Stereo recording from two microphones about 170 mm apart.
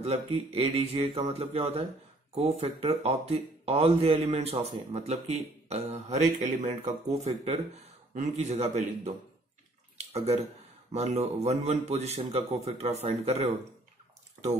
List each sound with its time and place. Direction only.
0.0 s a man's voice: 35° right (ahead or behind)
9.9 s a sound: 40° right (ahead or behind)
10.9 s speech: 40° right (ahead or behind)